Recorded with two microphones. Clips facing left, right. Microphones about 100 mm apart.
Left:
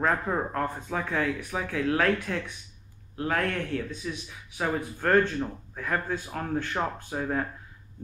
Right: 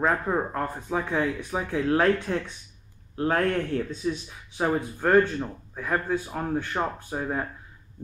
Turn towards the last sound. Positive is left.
turn(degrees=-10)  # may be behind; listen again after turning